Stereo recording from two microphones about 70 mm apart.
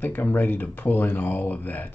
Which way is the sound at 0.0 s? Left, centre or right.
Left.